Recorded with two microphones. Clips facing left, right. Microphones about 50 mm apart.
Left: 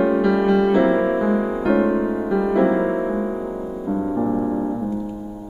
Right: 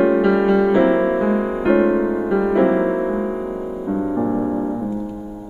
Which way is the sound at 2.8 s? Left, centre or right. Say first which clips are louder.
Right 2 dB; centre.